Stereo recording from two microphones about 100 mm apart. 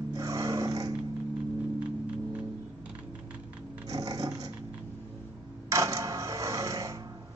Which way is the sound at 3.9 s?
35° right (ahead or behind).